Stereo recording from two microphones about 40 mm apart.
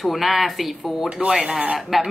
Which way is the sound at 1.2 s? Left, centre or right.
Right.